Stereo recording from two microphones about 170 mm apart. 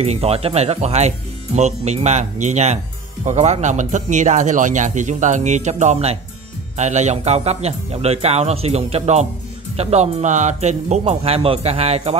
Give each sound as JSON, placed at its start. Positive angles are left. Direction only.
{"t": 0.0, "sound": "speech", "side_deg": -35}